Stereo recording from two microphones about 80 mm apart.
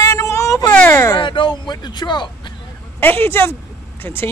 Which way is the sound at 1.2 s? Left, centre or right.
Left.